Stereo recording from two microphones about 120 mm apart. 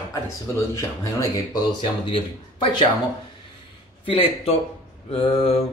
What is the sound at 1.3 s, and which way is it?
Speech, 35° left (ahead or behind).